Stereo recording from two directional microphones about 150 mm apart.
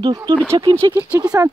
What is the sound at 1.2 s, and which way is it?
Speech, 25° right (ahead or behind).